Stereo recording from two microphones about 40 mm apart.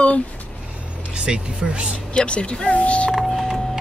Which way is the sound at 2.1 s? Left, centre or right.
Left.